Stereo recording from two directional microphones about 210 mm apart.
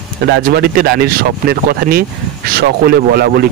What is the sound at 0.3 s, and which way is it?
Speech, 45° right (ahead or behind).